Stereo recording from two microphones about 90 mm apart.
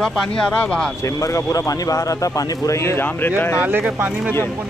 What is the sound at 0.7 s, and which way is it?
Speech, 5° left (ahead or behind).